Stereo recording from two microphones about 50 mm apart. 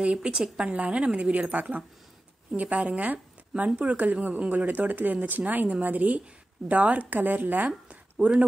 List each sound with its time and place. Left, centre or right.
0.0 s a woman's voice: right